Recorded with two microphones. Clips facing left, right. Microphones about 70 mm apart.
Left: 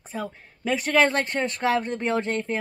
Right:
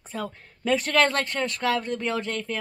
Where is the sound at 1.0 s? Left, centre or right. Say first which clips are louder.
Left 2 dB; left.